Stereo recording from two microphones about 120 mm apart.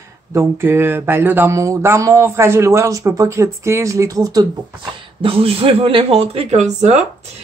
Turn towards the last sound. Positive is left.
turn(degrees=-70)  # may be behind; listen again after turning